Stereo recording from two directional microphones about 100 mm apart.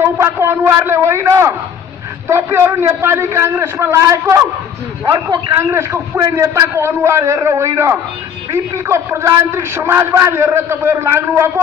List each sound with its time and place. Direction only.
0.0 s a man's voice: 25° right (ahead or behind)
5.6 s a man's voice: 25° right (ahead or behind)